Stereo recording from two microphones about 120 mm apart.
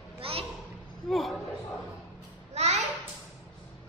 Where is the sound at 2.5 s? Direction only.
70° right (ahead or behind).